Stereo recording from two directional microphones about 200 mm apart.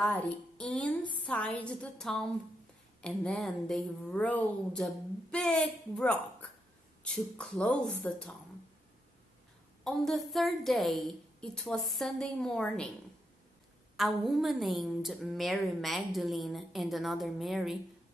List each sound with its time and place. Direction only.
0.0 s a woman's voice: 5° left (ahead or behind)
9.8 s a woman's voice: centre (ahead or behind)
13.9 s a woman's voice: centre (ahead or behind)